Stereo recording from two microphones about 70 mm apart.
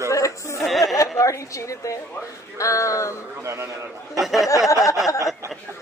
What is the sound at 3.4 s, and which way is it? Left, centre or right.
Speech, right.